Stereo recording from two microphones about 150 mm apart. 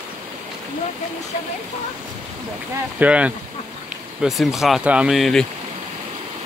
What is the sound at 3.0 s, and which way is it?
Speech, 10° right (ahead or behind).